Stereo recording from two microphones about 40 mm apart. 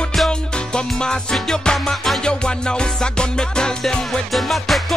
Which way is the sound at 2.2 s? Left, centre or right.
Left.